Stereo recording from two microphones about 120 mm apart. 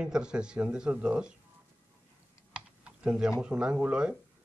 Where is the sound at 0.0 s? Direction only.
5° right (ahead or behind).